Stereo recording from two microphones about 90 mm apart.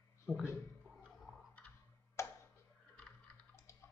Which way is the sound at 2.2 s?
30° left (ahead or behind).